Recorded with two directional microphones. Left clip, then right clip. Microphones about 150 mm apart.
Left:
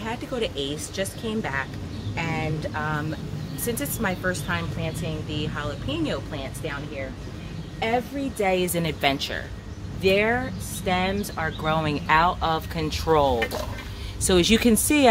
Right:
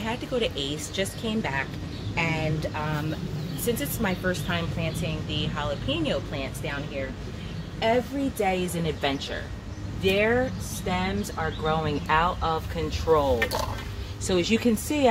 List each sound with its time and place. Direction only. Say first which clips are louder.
0.0 s speech: right 1 dB; 10° left (ahead or behind)
8.4 s speech: left 5 dB; 50° left (ahead or behind); by 15.0 s 65° left (ahead or behind)